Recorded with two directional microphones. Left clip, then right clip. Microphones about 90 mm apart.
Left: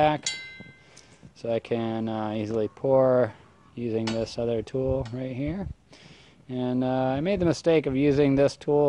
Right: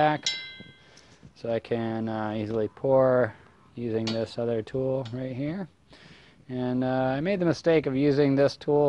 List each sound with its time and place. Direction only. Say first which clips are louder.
1.4 s speech: left 1 dB; 10° right (ahead or behind)
3.8 s cutlery: left 1 dB; 5° right (ahead or behind)
4.2 s speech: left 1 dB; 10° right (ahead or behind)